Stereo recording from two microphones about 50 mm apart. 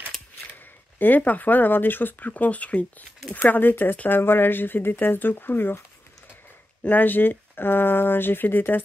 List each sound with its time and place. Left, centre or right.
0.9 s speech: left
3.4 s speech: left
6.9 s speech: left